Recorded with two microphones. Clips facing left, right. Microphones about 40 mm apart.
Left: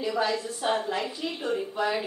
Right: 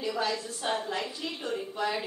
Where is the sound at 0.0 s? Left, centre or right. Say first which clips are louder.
Left 4 dB; centre.